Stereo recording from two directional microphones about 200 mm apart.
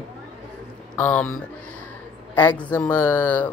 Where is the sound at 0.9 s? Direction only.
5° left (ahead or behind).